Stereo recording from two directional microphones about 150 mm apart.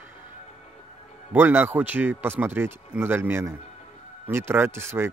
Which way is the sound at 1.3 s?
10° right (ahead or behind).